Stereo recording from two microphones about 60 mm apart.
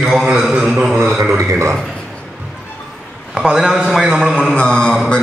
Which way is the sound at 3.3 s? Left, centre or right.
Centre.